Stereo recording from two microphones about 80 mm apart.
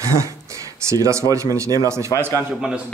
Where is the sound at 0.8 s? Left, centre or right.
Right.